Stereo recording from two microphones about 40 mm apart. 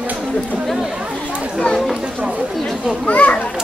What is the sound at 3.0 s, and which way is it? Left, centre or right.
Children playing, left.